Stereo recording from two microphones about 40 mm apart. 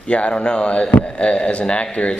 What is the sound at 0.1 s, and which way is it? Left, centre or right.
A man's voice, left.